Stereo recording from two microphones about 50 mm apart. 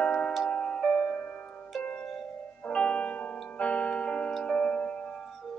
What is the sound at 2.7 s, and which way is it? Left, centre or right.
Music, left.